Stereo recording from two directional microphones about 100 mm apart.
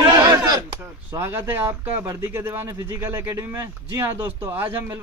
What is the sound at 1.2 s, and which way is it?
Speech, 25° right (ahead or behind).